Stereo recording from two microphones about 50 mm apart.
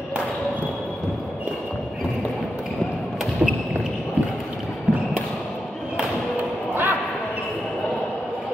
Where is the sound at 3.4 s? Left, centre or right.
Right.